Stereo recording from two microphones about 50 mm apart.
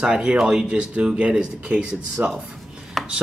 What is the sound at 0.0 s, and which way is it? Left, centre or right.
Speech, centre.